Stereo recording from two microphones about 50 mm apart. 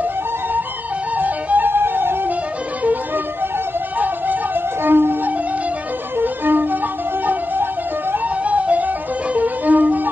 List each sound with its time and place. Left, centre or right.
1.1 s music: right
4.0 s music: right
6.1 s violin: right
8.5 s music: right